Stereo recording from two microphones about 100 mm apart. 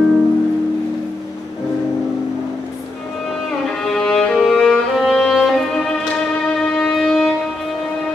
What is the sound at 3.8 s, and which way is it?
Music, 5° left (ahead or behind).